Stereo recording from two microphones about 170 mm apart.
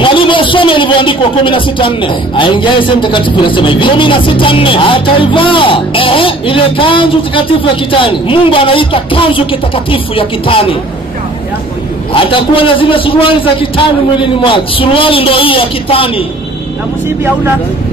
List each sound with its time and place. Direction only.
0.0 s a man's voice: 30° left (ahead or behind)
12.1 s a man's voice: 30° left (ahead or behind)